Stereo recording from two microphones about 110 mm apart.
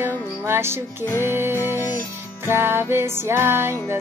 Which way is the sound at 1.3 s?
20° right (ahead or behind).